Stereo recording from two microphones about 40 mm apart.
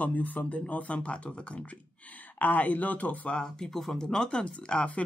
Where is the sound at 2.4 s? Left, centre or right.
Left.